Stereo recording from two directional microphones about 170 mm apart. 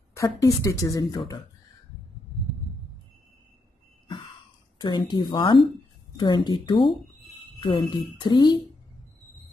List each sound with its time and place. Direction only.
0.1 s speech: 20° left (ahead or behind)
4.7 s speech: 25° left (ahead or behind)